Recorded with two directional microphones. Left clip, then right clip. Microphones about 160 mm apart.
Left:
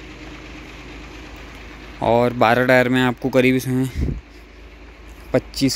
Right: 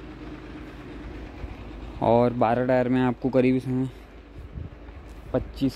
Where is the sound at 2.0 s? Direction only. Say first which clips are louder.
Left 4 dB; 5° right (ahead or behind).